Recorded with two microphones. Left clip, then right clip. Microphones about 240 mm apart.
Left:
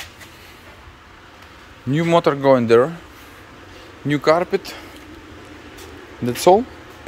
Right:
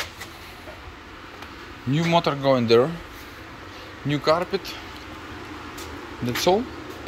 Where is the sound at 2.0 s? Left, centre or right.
Left.